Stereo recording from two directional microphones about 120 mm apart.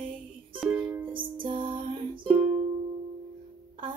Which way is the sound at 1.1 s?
45° right (ahead or behind).